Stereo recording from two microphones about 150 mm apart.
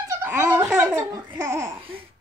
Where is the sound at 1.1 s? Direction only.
25° right (ahead or behind).